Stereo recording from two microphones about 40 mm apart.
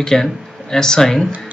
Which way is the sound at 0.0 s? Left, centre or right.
Centre.